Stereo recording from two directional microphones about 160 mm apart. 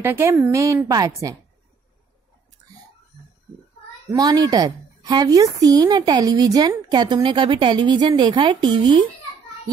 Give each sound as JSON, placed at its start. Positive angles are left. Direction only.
{"t": 0.0, "sound": "a woman's voice", "side_deg": -15}
{"t": 4.1, "sound": "a woman's voice", "side_deg": -25}